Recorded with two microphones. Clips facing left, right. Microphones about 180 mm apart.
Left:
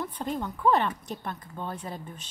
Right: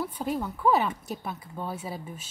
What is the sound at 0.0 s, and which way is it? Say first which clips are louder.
Speech: right 2 dB; 5° right (ahead or behind).